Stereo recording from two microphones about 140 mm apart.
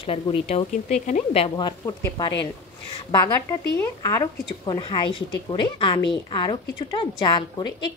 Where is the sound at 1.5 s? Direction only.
30° left (ahead or behind).